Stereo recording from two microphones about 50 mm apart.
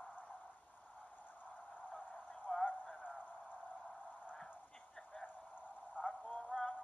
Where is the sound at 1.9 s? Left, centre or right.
Left.